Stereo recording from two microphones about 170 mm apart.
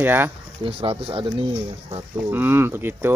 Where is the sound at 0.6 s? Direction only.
35° right (ahead or behind).